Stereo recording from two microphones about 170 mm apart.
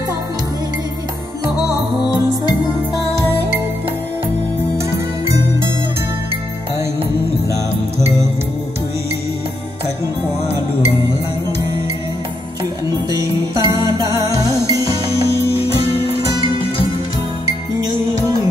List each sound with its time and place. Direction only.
13.1 s music: 20° right (ahead or behind)